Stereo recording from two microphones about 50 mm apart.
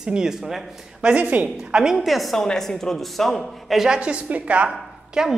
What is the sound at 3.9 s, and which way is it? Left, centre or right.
Speech, right.